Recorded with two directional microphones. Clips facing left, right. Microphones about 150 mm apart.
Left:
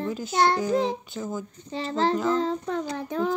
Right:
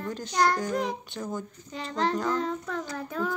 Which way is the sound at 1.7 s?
30° left (ahead or behind).